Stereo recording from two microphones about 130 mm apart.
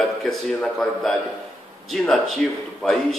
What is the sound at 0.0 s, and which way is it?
A man's voice, centre (ahead or behind).